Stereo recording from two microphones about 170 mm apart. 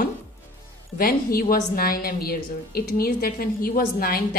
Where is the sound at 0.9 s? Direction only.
60° left (ahead or behind).